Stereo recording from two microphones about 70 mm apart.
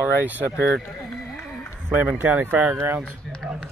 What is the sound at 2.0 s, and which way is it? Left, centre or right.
Speech, right.